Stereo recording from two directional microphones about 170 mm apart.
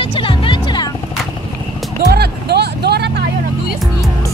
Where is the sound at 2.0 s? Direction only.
75° right (ahead or behind).